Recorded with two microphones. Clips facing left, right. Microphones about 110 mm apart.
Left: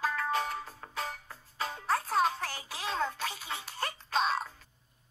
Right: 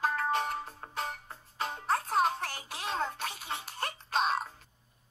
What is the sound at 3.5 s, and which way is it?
Music, 30° right (ahead or behind).